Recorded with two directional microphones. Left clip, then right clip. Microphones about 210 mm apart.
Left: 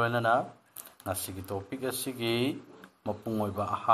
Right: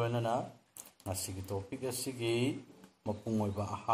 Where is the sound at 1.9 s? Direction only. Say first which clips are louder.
Left 3 dB; 90° left.